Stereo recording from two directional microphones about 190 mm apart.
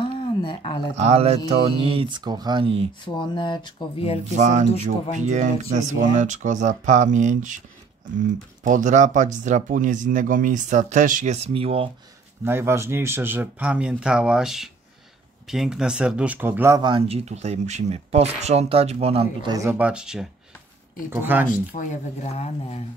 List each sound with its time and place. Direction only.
0.0 s a sound: 25° left (ahead or behind)
1.0 s speech: 35° right (ahead or behind)
3.2 s speech: 25° left (ahead or behind)
4.4 s speech: 40° right (ahead or behind)
8.6 s speech: 40° right (ahead or behind)
12.4 s a man's voice: 15° right (ahead or behind); by 19.5 s 30° right (ahead or behind)
19.5 s a man's voice: 15° right (ahead or behind)
21.7 s speech: 35° left (ahead or behind)